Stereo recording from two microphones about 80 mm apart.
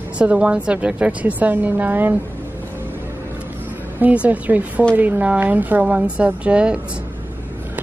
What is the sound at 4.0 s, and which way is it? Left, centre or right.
A woman's voice, right.